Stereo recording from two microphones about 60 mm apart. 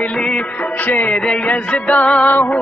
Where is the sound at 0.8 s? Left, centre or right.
Left.